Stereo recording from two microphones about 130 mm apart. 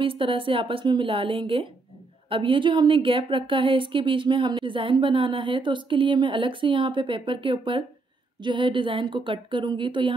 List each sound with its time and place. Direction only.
0.0 s a woman's voice: 45° right (ahead or behind)